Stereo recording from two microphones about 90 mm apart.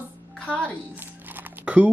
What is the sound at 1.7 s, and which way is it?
Speech, 10° right (ahead or behind).